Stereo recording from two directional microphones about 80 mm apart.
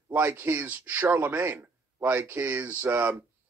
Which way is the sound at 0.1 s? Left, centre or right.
Right.